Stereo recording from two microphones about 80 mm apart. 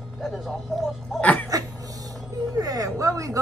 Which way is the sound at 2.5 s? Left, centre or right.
Right.